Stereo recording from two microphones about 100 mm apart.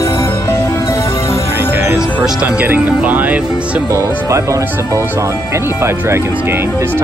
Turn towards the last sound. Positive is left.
turn(degrees=-25)  # may be behind; listen again after turning